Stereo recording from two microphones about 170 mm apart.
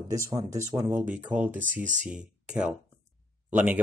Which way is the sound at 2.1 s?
5° right (ahead or behind).